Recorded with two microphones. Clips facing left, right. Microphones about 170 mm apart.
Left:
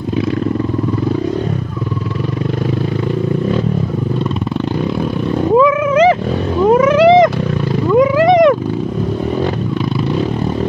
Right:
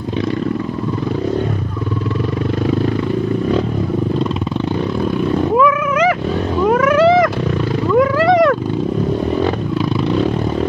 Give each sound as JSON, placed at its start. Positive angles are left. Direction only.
{"t": 5.6, "sound": "a sound", "side_deg": 25}
{"t": 6.6, "sound": "whale vocalization", "side_deg": 25}
{"t": 7.9, "sound": "wild animals", "side_deg": 20}